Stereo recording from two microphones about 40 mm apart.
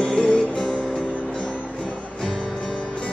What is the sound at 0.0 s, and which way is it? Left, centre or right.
Music, left.